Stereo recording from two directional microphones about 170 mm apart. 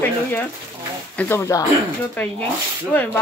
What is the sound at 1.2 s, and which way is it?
Speech, 15° left (ahead or behind).